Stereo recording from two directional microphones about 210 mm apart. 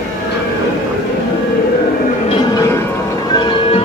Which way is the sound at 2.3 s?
15° left (ahead or behind).